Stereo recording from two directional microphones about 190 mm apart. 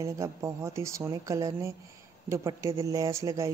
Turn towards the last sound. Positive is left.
turn(degrees=-15)  # may be behind; listen again after turning